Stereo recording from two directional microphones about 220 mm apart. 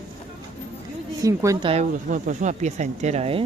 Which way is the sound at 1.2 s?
15° right (ahead or behind).